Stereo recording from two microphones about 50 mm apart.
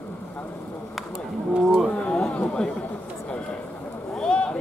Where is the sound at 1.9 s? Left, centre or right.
Left.